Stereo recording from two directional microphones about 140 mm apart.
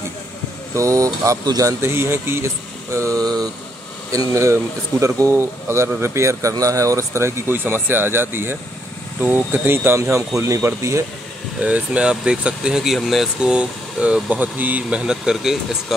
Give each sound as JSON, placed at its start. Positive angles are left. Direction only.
{"t": 0.7, "sound": "speech", "side_deg": -25}
{"t": 11.6, "sound": "speech", "side_deg": -10}